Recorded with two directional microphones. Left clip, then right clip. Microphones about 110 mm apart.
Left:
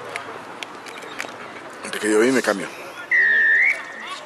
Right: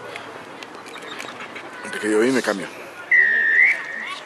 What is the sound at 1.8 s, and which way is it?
Speech, 5° left (ahead or behind).